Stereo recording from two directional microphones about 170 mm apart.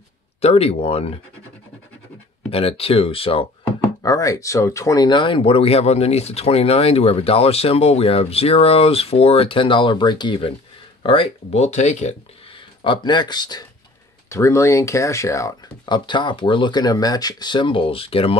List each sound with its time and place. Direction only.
0.4 s speech: 35° left (ahead or behind)
2.5 s speech: 35° left (ahead or behind)
4.0 s speech: 20° left (ahead or behind); by 12.2 s 40° left (ahead or behind)
12.8 s speech: 25° left (ahead or behind)